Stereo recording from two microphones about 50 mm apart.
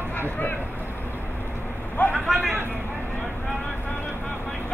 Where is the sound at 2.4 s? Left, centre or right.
Right.